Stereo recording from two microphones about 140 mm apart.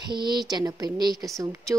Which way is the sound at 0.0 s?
30° right (ahead or behind).